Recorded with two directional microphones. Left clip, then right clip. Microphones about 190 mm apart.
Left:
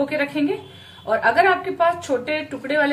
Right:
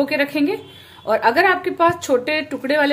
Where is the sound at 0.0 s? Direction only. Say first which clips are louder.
Right 3 dB; 45° right (ahead or behind).